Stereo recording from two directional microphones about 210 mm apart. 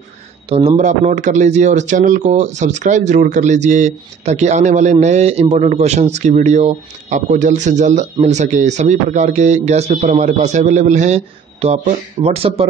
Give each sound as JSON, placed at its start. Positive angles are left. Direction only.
{"t": 0.5, "sound": "a man's voice", "side_deg": -30}